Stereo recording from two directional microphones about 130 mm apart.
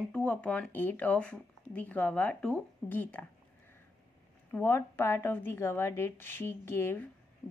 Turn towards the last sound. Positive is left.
turn(degrees=15)  # may be behind; listen again after turning